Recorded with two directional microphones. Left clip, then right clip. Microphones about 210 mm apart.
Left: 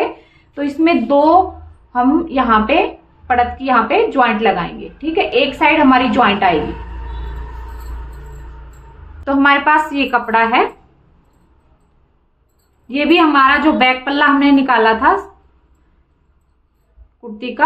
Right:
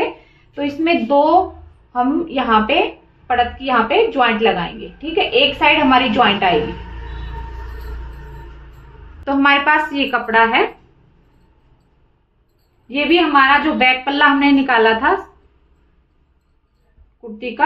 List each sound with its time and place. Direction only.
0.6 s a woman's voice: 35° left (ahead or behind)
9.2 s a woman's voice: 20° left (ahead or behind)
12.8 s a woman's voice: 35° left (ahead or behind)